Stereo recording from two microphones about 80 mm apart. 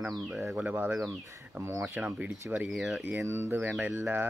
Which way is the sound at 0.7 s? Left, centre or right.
Centre.